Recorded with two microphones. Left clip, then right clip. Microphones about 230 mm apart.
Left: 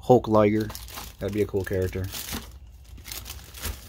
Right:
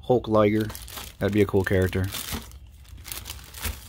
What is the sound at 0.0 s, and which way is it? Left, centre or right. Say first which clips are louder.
Speech: left 2 dB; centre.